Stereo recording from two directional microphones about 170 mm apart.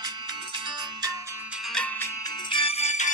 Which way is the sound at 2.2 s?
25° left (ahead or behind).